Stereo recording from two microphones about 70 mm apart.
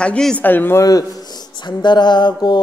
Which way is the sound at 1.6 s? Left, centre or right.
Left.